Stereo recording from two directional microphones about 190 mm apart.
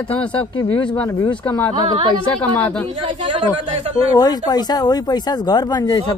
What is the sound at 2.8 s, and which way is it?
Speech, 25° right (ahead or behind).